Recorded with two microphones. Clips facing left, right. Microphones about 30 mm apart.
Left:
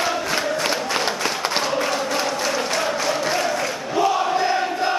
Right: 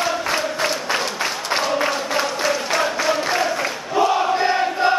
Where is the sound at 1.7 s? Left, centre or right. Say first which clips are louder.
Right 1 dB; centre.